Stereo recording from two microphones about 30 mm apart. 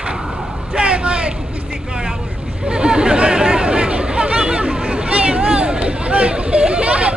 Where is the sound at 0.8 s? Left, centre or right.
Right.